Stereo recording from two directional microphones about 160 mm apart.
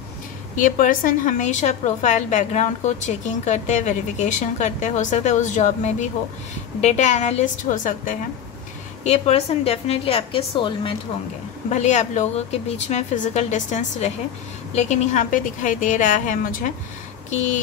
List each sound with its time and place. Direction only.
0.6 s a woman's voice: 55° left (ahead or behind)
9.0 s a woman's voice: 45° left (ahead or behind)
11.7 s a woman's voice: 45° left (ahead or behind)